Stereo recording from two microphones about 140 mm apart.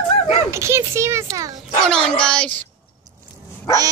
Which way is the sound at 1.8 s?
5° left (ahead or behind).